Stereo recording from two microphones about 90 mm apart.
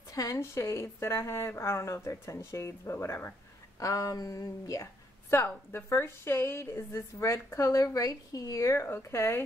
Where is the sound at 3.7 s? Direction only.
40° left (ahead or behind).